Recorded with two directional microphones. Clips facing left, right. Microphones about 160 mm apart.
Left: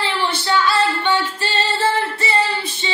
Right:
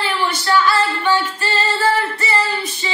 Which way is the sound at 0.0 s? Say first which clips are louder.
Right 1 dB; 25° left (ahead or behind).